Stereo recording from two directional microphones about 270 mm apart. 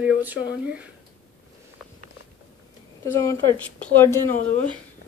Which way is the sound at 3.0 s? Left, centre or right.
Centre.